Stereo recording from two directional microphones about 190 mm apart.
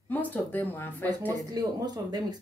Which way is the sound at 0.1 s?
10° left (ahead or behind).